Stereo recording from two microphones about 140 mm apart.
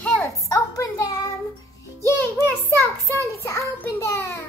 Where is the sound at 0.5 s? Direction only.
25° left (ahead or behind).